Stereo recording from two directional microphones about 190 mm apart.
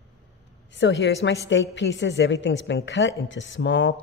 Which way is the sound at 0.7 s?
70° left (ahead or behind).